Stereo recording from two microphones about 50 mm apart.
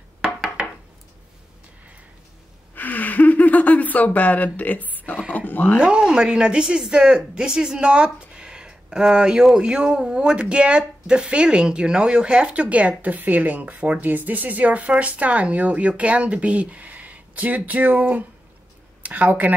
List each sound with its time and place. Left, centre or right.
2.7 s gasp: left
5.3 s speech: left
5.8 s a woman's voice: centre; by 19.5 s right